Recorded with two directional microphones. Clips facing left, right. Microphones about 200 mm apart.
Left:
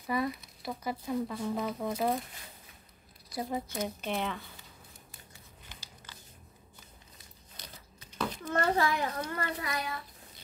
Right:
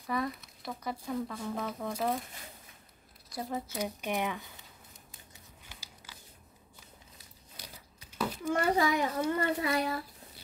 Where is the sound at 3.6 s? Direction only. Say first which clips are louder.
Even; 10° right (ahead or behind).